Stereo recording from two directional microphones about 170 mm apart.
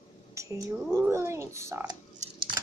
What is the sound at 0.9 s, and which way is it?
Speech, 15° right (ahead or behind).